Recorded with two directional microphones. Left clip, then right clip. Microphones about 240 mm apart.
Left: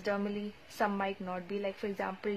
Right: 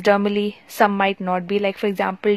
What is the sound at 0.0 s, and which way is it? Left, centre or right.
A woman's voice, right.